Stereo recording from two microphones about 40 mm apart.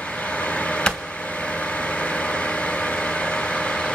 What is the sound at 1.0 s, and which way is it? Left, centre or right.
Vehicle, left.